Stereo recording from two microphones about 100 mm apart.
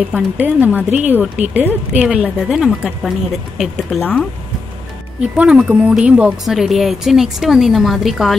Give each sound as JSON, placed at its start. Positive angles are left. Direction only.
{"t": 0.1, "sound": "a woman's voice", "side_deg": -15}
{"t": 5.2, "sound": "a woman's voice", "side_deg": -10}
{"t": 6.4, "sound": "a woman's voice", "side_deg": 0}